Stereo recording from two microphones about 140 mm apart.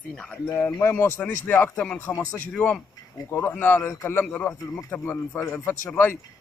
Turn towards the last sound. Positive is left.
turn(degrees=15)  # may be behind; listen again after turning